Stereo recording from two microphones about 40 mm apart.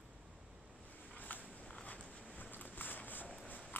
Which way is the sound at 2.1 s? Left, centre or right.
Left.